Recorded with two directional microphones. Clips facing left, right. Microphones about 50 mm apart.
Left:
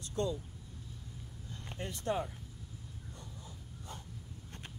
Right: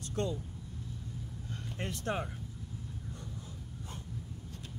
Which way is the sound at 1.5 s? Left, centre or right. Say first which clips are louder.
Right 3 dB; right.